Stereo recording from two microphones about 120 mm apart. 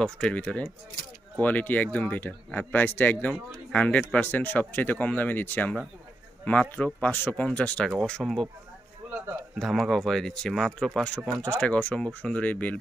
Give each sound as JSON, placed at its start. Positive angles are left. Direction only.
{"t": 0.0, "sound": "speech", "side_deg": 10}
{"t": 9.1, "sound": "a sound", "side_deg": -20}
{"t": 9.6, "sound": "speech", "side_deg": 0}